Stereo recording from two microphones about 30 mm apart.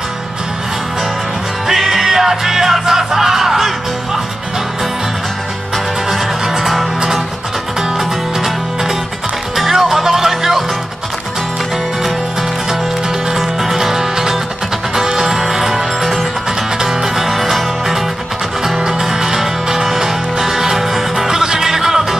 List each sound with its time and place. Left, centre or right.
1.7 s music: centre
6.1 s music: centre
8.0 s music: centre
13.4 s music: centre
18.6 s music: centre
21.3 s music: right